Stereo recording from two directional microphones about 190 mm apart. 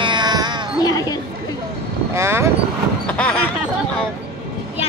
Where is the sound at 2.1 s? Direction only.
15° right (ahead or behind).